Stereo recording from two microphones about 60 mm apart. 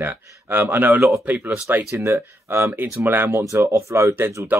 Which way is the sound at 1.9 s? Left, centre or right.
Right.